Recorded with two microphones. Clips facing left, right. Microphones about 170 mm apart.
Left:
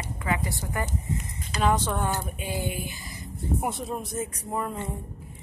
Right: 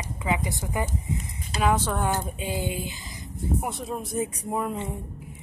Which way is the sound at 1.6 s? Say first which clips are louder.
Right 1 dB; 5° right (ahead or behind).